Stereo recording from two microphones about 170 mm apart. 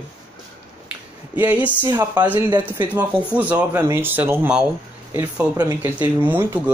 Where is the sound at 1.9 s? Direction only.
25° right (ahead or behind).